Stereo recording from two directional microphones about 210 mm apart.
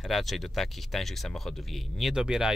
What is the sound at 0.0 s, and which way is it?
Speech, centre (ahead or behind).